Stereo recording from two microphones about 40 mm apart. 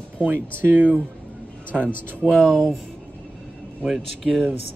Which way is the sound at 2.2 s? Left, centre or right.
Centre.